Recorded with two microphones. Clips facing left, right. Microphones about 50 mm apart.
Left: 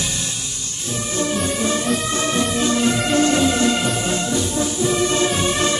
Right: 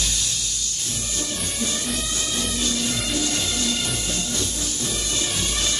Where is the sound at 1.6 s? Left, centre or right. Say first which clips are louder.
Left 7 dB; left.